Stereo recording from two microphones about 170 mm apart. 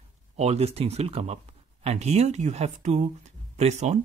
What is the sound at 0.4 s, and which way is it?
Speech, 40° right (ahead or behind).